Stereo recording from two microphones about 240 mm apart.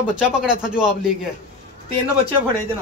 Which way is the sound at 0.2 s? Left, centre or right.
Centre.